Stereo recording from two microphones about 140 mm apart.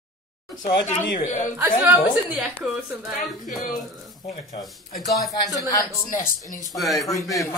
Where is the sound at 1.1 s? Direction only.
60° left (ahead or behind).